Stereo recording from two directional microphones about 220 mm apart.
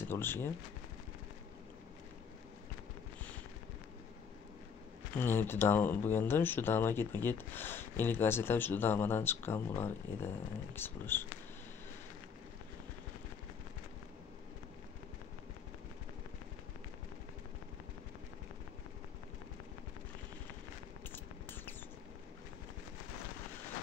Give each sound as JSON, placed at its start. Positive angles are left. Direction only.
{"t": 0.0, "sound": "speech", "side_deg": 10}
{"t": 5.1, "sound": "speech", "side_deg": 10}
{"t": 21.1, "sound": "a sound", "side_deg": 10}